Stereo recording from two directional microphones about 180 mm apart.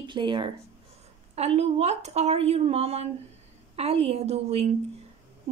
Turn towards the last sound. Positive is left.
turn(degrees=-35)  # may be behind; listen again after turning